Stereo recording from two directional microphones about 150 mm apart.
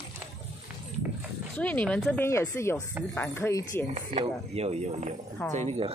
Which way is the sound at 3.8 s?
40° right (ahead or behind).